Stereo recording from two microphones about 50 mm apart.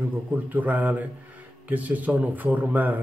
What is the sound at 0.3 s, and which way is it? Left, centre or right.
A man's voice, right.